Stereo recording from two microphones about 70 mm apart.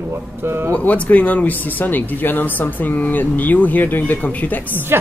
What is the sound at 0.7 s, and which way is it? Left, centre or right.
Speech, left.